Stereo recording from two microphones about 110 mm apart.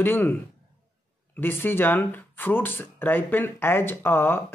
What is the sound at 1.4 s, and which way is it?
Speech, 20° left (ahead or behind).